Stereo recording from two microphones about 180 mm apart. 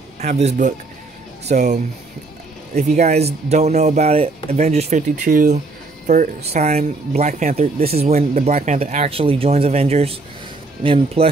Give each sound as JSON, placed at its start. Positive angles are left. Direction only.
{"t": 0.2, "sound": "speech", "side_deg": -40}